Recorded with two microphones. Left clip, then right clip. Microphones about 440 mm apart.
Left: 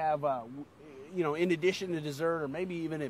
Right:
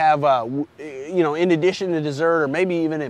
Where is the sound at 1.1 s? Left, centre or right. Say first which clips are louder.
Right 12 dB; right.